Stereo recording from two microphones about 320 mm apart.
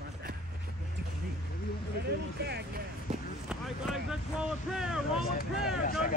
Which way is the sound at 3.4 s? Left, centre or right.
Centre.